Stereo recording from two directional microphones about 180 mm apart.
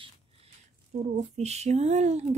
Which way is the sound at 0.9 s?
40° right (ahead or behind).